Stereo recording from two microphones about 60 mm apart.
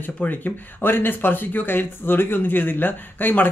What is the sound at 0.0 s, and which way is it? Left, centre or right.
Speech, left.